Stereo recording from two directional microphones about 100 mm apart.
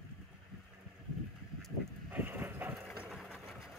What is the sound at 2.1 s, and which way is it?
Vehicle, 20° right (ahead or behind).